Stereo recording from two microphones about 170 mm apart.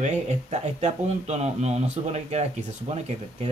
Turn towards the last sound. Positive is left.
turn(degrees=-40)  # may be behind; listen again after turning